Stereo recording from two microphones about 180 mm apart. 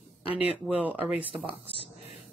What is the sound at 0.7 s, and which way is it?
Speech, 10° right (ahead or behind).